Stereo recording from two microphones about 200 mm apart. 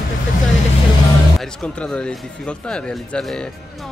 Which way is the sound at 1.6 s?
5° left (ahead or behind).